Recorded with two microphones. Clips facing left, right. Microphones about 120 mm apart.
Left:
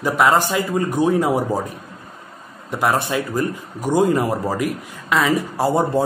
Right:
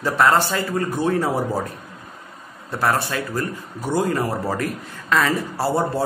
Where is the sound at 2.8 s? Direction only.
20° left (ahead or behind).